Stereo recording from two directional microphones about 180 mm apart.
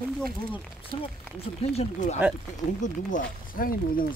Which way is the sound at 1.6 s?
35° left (ahead or behind).